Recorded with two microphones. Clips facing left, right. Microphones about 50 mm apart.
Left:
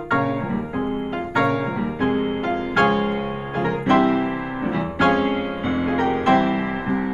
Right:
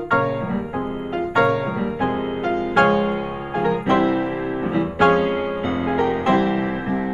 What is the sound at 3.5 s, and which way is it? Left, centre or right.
Music, centre.